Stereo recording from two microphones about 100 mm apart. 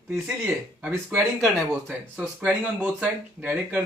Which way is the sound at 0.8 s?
20° right (ahead or behind).